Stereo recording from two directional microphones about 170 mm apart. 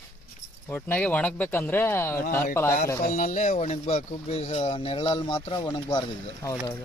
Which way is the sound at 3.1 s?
45° left (ahead or behind).